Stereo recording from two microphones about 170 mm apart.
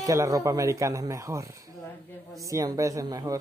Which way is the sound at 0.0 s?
20° right (ahead or behind).